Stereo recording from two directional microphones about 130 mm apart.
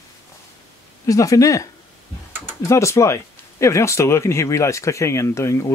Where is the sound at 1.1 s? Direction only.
25° left (ahead or behind).